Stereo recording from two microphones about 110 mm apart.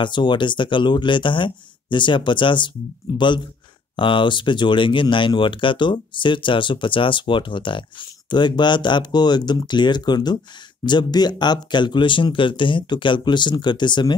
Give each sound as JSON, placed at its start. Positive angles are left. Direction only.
{"t": 0.0, "sound": "speech", "side_deg": 45}
{"t": 3.9, "sound": "speech", "side_deg": 50}